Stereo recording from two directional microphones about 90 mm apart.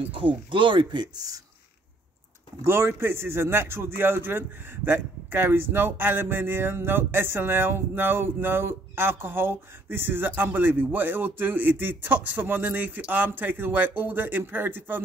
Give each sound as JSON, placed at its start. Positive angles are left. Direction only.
{"t": 0.1, "sound": "speech", "side_deg": -70}
{"t": 2.6, "sound": "speech", "side_deg": -25}